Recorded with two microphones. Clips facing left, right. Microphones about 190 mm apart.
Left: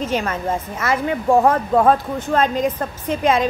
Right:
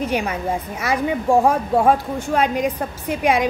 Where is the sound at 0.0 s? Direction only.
15° right (ahead or behind).